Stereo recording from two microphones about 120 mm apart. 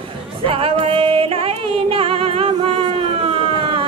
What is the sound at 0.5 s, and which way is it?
Music, 50° right (ahead or behind).